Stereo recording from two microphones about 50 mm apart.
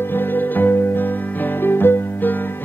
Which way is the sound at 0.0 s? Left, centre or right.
Left.